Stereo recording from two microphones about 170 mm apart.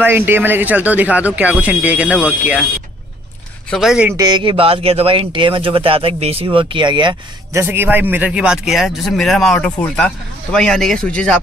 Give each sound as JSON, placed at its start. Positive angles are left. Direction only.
{"t": 0.0, "sound": "speech", "side_deg": -10}
{"t": 3.7, "sound": "a man's voice", "side_deg": -5}
{"t": 4.1, "sound": "speech", "side_deg": -25}
{"t": 7.5, "sound": "a man's voice", "side_deg": -15}